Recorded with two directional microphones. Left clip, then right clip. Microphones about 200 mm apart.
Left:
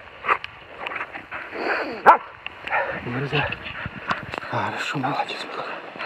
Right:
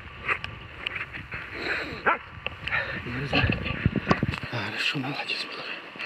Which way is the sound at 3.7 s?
15° right (ahead or behind).